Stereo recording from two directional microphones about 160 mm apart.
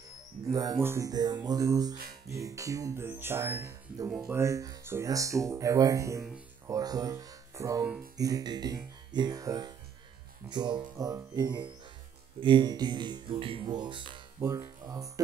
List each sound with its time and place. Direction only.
0.5 s speech: 20° right (ahead or behind)
14.4 s speech: 20° right (ahead or behind)